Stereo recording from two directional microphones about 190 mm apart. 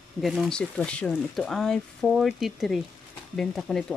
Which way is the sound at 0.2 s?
Centre (ahead or behind).